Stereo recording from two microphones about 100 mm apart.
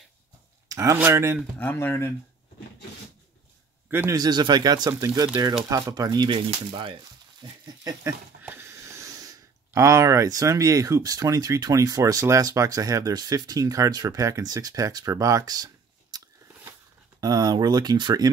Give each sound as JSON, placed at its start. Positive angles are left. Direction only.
{"t": 0.7, "sound": "a sound", "side_deg": -35}
{"t": 1.1, "sound": "speech", "side_deg": -25}
{"t": 1.6, "sound": "speech", "side_deg": 15}
{"t": 4.1, "sound": "speech", "side_deg": -40}
{"t": 6.0, "sound": "speech", "side_deg": -50}
{"t": 8.0, "sound": "speech", "side_deg": -20}
{"t": 17.2, "sound": "speech", "side_deg": -40}